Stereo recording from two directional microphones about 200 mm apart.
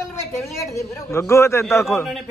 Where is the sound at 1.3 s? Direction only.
15° left (ahead or behind).